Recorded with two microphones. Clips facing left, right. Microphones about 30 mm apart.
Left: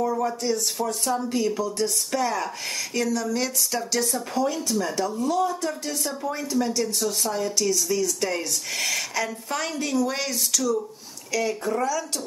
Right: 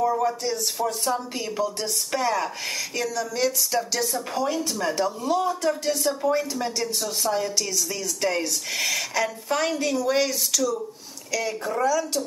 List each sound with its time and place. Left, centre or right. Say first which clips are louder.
0.1 s speech: even; centre
2.9 s speech: left 5 dB; centre
4.4 s speech: left 1 dB; centre